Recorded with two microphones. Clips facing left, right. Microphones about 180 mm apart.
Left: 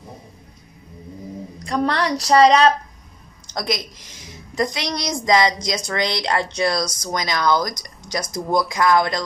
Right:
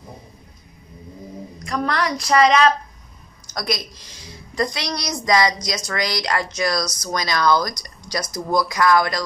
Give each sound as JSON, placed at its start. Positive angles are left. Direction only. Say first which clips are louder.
{"t": 1.6, "sound": "speech", "louder": "left 2 dB", "side_deg": 30}
{"t": 3.5, "sound": "a woman's voice", "louder": "left 1 dB", "side_deg": 20}